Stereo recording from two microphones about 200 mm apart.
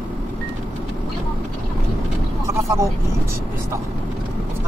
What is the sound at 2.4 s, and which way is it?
Vehicle, 15° right (ahead or behind).